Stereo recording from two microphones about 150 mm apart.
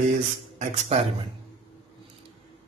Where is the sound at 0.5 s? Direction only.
50° right (ahead or behind).